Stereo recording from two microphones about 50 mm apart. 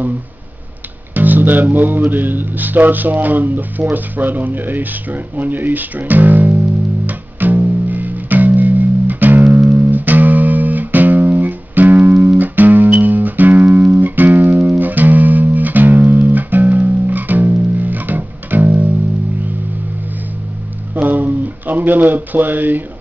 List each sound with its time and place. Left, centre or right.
1.1 s speech: right
7.1 s music: right
20.9 s a sound: right